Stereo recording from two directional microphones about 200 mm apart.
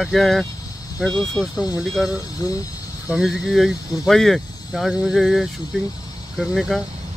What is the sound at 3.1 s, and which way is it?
Speech, centre (ahead or behind).